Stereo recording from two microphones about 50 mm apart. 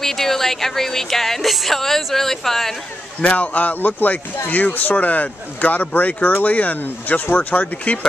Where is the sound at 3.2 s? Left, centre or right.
Left.